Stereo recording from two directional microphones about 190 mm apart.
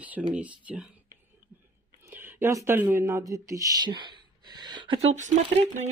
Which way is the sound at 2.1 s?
10° right (ahead or behind).